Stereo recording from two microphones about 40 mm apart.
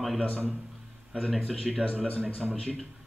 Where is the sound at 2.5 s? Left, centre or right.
Centre.